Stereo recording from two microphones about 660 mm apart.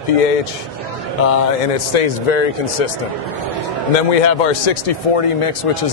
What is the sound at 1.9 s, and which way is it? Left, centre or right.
Speech, left.